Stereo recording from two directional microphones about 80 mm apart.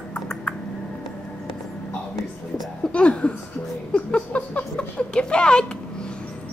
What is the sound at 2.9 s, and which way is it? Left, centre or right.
Speech, centre.